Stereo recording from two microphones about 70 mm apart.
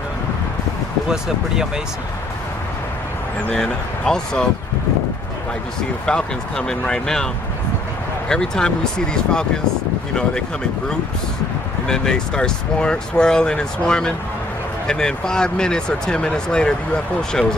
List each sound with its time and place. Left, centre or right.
1.0 s speech: centre
3.4 s speech: centre
6.0 s speech: centre
8.3 s speech: centre
11.9 s speech: centre